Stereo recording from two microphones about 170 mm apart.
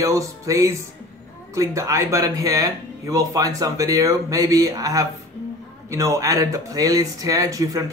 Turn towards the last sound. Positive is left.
turn(degrees=-20)  # may be behind; listen again after turning